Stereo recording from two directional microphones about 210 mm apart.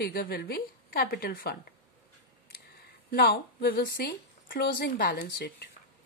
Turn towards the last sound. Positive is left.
turn(degrees=50)  # may be behind; listen again after turning